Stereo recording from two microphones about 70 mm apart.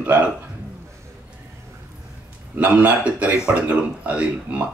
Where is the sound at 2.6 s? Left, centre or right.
Right.